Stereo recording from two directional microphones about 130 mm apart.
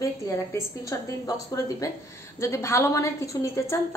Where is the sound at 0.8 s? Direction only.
25° left (ahead or behind).